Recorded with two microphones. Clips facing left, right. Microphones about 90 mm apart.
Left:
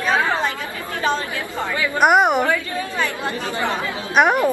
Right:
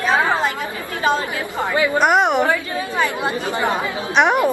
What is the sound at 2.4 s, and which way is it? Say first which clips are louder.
A woman's voice: right 1 dB; 15° right (ahead or behind).